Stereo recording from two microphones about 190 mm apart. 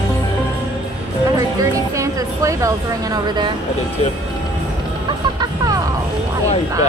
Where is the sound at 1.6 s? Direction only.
15° right (ahead or behind).